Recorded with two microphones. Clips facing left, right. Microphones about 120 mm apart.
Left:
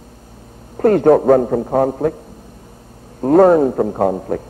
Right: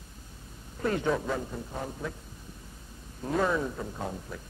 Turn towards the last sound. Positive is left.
turn(degrees=65)  # may be behind; listen again after turning